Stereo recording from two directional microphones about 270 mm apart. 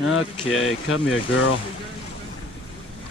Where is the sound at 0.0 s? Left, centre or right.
Left.